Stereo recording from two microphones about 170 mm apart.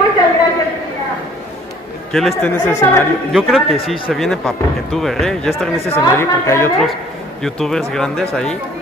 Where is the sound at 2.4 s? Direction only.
15° left (ahead or behind).